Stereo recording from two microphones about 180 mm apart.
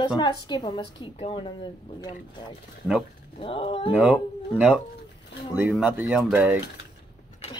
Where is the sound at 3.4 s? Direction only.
30° left (ahead or behind).